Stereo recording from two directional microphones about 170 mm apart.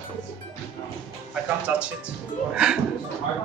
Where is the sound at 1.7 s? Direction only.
10° right (ahead or behind).